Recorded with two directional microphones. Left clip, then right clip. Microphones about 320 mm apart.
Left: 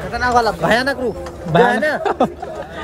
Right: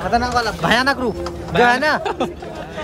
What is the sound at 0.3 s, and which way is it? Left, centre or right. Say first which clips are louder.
Speech: left 5 dB; centre.